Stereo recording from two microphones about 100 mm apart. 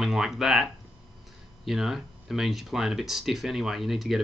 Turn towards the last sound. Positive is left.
turn(degrees=-5)  # may be behind; listen again after turning